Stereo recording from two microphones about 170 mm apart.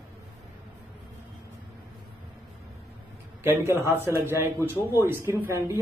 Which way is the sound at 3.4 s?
15° right (ahead or behind).